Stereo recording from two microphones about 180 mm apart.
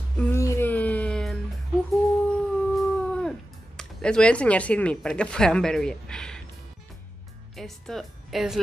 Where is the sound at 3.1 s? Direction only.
5° left (ahead or behind).